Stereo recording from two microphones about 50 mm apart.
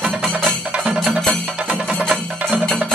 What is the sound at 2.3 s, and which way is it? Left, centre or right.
Music, right.